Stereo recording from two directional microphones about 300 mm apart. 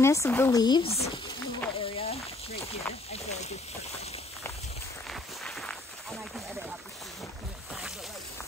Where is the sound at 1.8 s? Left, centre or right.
Centre.